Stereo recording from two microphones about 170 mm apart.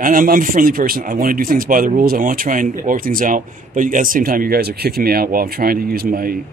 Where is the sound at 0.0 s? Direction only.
55° right (ahead or behind).